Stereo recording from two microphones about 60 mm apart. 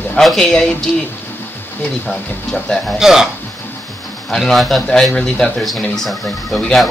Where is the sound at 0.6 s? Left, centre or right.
Centre.